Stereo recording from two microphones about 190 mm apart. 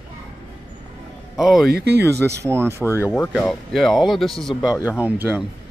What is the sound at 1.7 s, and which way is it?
Speech, 55° right (ahead or behind).